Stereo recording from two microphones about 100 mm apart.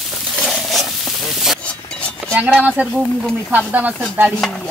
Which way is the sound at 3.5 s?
15° right (ahead or behind).